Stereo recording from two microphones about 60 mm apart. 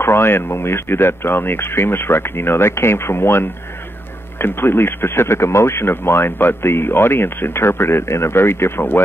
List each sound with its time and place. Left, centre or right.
0.0 s speech: left